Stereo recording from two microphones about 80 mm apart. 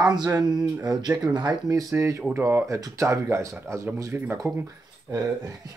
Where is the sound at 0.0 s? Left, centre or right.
Right.